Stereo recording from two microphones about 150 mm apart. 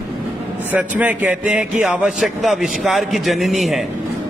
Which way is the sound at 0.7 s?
10° right (ahead or behind).